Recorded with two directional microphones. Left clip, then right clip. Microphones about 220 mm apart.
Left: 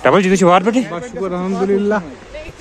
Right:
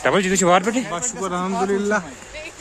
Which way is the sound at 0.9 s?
10° right (ahead or behind).